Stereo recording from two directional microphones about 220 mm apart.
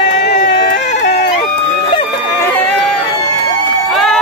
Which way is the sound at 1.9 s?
20° left (ahead or behind).